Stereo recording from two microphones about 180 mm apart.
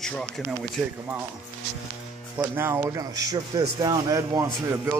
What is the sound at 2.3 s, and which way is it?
A man's voice, 10° right (ahead or behind).